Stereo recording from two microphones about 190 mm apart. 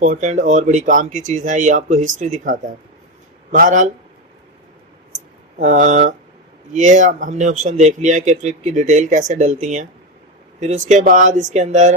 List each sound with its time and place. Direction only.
0.0 s speech: 40° right (ahead or behind)
5.6 s speech: 40° right (ahead or behind)